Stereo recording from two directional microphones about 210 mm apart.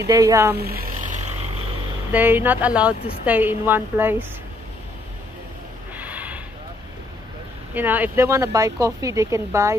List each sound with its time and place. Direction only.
0.0 s speech: 15° right (ahead or behind)
0.6 s vehicle: 45° right (ahead or behind)
2.1 s speech: 10° right (ahead or behind)
5.9 s snort: 5° right (ahead or behind)
7.7 s speech: 10° right (ahead or behind)